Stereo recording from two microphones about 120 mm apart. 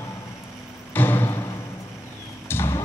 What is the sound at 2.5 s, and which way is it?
Horse, 20° left (ahead or behind).